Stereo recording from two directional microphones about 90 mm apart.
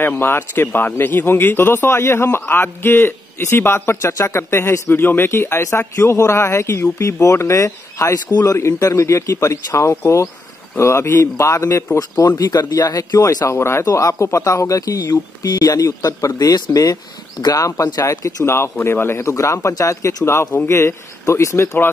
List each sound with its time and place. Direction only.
0.0 s speech: 25° left (ahead or behind); by 18.1 s 40° left (ahead or behind)
18.1 s speech: 30° left (ahead or behind)